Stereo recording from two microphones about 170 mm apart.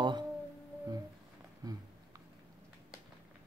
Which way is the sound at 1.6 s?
20° right (ahead or behind).